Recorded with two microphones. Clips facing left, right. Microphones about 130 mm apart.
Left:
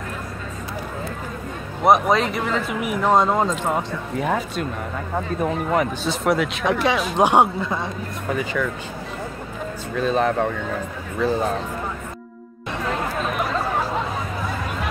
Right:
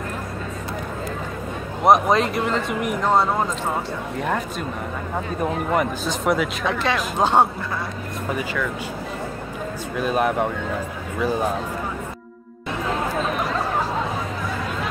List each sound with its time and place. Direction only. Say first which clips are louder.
1.9 s speech: even; centre (ahead or behind)
3.1 s speech: left 3 dB; 15° left (ahead or behind)
4.2 s speech: left 3 dB; centre (ahead or behind)
6.6 s speech: left 2 dB; 15° left (ahead or behind)
9.9 s speech: left 1 dB; 10° right (ahead or behind)